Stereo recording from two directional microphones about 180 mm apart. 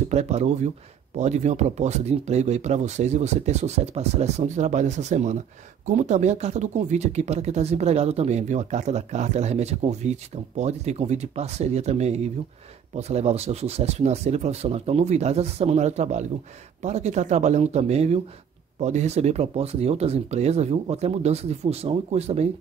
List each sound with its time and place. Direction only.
0.1 s speech: 35° right (ahead or behind)